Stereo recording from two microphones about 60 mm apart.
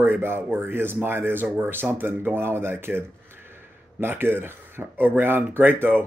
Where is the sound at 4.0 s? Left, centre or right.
Right.